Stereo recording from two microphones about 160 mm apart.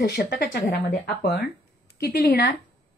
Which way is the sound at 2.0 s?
75° left (ahead or behind).